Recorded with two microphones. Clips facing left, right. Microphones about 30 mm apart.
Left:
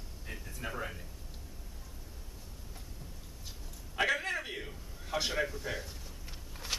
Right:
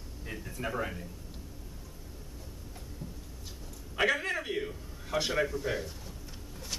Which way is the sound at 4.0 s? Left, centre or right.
Centre.